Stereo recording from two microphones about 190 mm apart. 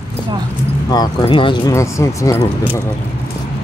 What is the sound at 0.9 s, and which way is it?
Speech, 25° left (ahead or behind).